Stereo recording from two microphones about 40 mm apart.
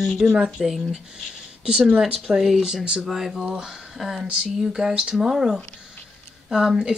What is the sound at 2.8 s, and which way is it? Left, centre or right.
Speech, right.